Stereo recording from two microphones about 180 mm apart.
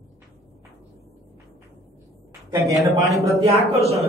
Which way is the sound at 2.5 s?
15° right (ahead or behind).